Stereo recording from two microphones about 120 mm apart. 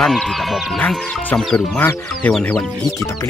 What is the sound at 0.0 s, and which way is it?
Speech, centre (ahead or behind).